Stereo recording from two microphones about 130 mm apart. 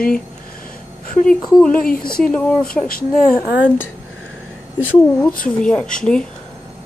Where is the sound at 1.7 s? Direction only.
90° left.